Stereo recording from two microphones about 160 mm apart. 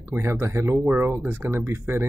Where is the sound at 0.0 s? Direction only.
15° right (ahead or behind).